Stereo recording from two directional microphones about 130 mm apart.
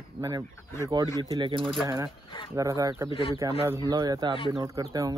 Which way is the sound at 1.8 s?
25° right (ahead or behind).